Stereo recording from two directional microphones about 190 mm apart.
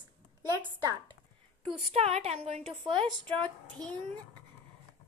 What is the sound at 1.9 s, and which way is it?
A woman's voice, 30° right (ahead or behind).